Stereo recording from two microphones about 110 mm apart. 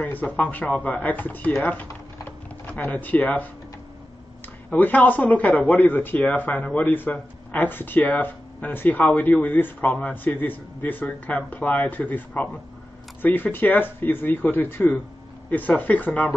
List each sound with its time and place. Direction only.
0.0 s speech: 15° left (ahead or behind)
1.7 s typing: 15° left (ahead or behind)
4.6 s speech: 15° left (ahead or behind)